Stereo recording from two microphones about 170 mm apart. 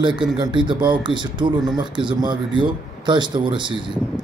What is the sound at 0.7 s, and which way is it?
Speech, 30° right (ahead or behind).